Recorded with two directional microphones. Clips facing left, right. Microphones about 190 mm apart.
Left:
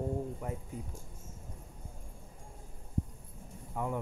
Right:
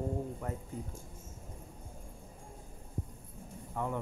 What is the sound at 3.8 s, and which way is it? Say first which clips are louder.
Speech: even; 10° left (ahead or behind).